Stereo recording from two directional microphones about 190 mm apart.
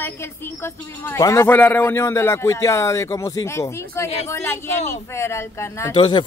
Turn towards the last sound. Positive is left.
turn(degrees=25)  # may be behind; listen again after turning